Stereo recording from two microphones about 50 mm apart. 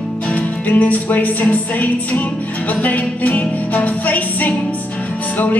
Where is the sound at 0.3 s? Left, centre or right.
Left.